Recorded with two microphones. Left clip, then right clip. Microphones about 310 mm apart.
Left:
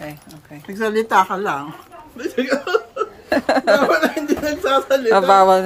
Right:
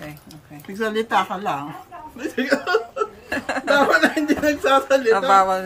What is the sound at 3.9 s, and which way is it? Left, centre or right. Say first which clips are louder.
Speech: even; centre.